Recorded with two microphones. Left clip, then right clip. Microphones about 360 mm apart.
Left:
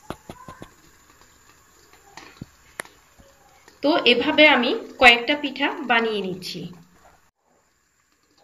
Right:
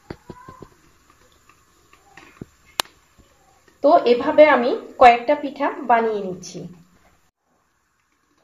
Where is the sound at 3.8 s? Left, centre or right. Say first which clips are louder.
Right 4 dB; centre.